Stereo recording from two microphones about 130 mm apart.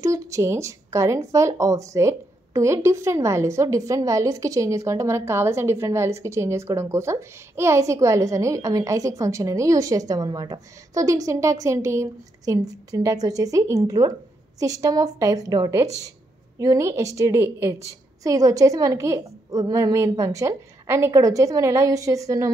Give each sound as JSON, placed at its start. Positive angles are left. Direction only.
{"t": 0.0, "sound": "speech", "side_deg": -25}